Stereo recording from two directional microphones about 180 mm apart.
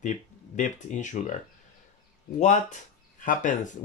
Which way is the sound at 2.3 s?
40° left (ahead or behind).